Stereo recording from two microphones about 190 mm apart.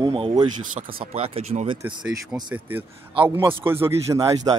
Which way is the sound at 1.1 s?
30° right (ahead or behind).